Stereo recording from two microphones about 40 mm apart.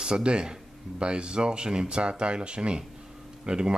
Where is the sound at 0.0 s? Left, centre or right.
Right.